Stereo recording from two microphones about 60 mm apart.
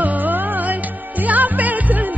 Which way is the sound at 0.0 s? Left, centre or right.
Right.